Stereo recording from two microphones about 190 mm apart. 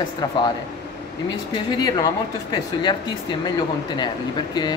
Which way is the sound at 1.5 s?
20° left (ahead or behind).